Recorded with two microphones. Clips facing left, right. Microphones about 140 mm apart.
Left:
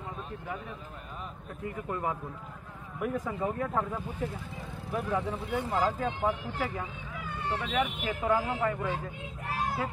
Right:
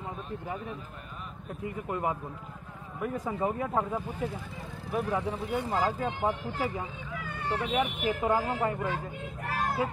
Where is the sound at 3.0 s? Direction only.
Centre (ahead or behind).